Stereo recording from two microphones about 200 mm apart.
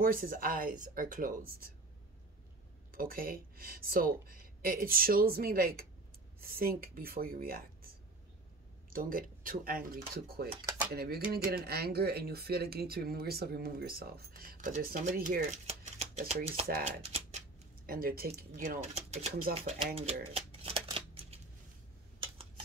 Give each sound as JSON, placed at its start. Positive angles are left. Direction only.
{"t": 0.0, "sound": "speech", "side_deg": -45}
{"t": 2.9, "sound": "speech", "side_deg": -45}
{"t": 8.9, "sound": "speech", "side_deg": -45}
{"t": 10.6, "sound": "a sound", "side_deg": -15}
{"t": 10.9, "sound": "speech", "side_deg": -50}
{"t": 17.8, "sound": "speech", "side_deg": -45}
{"t": 20.0, "sound": "shuffling cards", "side_deg": -30}